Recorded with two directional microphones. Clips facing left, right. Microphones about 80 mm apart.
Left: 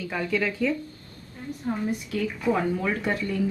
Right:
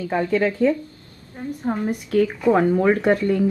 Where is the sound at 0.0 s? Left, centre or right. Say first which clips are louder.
Right 7 dB; right.